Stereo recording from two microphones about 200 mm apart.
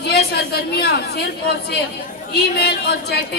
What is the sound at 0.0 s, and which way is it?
A woman's voice, 55° left (ahead or behind).